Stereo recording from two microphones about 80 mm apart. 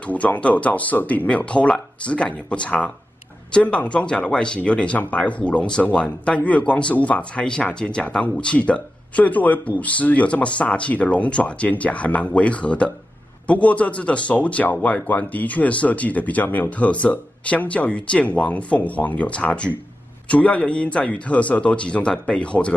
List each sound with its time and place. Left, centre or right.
0.0 s speech: centre